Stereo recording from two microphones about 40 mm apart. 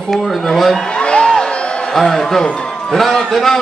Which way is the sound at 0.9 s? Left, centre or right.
Left.